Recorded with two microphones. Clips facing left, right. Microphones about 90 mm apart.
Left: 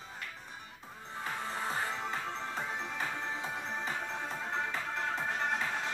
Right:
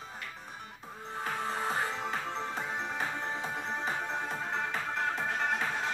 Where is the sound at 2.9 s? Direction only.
30° right (ahead or behind).